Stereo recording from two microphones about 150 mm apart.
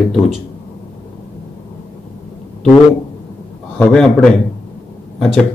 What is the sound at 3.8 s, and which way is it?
Speech, 5° left (ahead or behind).